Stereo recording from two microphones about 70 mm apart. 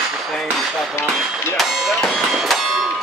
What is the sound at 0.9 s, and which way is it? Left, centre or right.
Speech, left.